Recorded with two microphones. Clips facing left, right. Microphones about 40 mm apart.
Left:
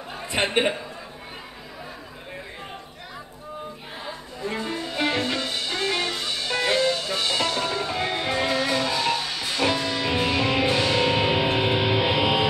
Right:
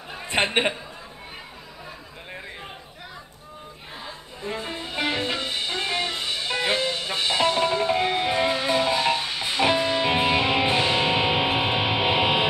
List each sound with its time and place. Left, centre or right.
0.3 s a man's voice: right
4.5 s music: right